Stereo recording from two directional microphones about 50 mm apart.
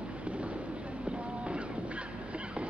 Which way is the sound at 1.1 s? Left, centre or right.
Right.